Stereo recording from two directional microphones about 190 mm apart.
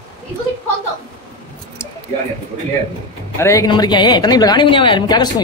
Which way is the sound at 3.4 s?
15° left (ahead or behind).